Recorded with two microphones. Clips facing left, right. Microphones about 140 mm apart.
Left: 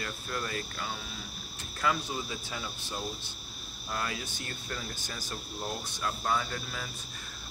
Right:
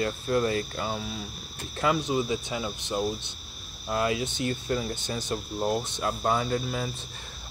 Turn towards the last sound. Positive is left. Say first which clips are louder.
# right 10 dB
turn(degrees=-30)  # may be behind; listen again after turning